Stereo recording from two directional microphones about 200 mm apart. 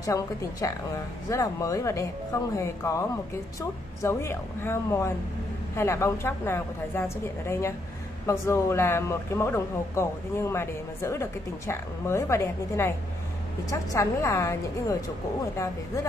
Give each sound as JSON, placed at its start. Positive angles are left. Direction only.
{"t": 0.0, "sound": "speech", "side_deg": 15}